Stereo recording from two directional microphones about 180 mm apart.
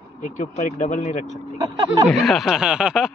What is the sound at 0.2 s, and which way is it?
Speech, 45° left (ahead or behind).